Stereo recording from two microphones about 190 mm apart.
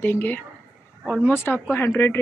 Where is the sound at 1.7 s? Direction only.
15° left (ahead or behind).